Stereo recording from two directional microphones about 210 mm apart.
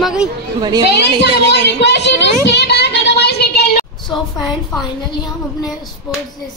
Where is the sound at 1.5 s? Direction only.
55° left (ahead or behind).